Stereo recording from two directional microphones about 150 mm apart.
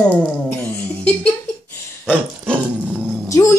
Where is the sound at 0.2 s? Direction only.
10° left (ahead or behind).